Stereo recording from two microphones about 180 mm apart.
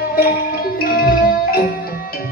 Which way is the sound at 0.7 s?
55° left (ahead or behind).